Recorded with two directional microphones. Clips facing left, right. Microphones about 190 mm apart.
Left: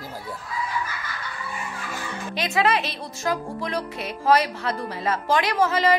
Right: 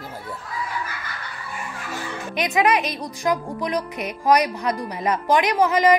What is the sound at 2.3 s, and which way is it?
A woman's voice, 20° right (ahead or behind).